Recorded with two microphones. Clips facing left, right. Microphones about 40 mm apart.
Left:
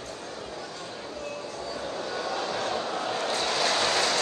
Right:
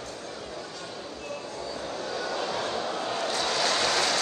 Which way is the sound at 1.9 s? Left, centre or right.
Left.